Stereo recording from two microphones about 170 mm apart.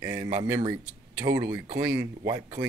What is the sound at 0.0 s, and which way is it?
Speech, 20° right (ahead or behind).